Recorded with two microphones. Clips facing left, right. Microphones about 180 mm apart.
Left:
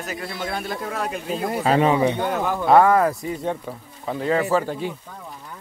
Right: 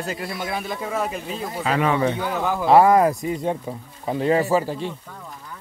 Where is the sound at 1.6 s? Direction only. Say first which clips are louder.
Left 3 dB; 30° left (ahead or behind).